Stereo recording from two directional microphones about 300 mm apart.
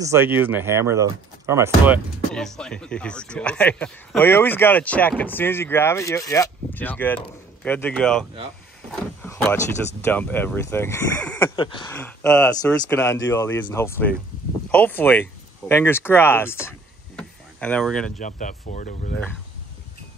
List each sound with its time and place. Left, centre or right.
0.0 s speech: centre
2.3 s speech: centre
17.2 s a sound: centre
18.1 s speech: left